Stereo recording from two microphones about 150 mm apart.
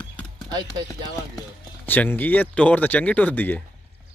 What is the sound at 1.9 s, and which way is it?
Speech, 10° left (ahead or behind).